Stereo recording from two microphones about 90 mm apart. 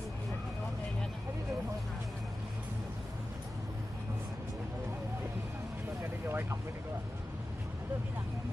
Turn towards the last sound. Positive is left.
turn(degrees=-25)  # may be behind; listen again after turning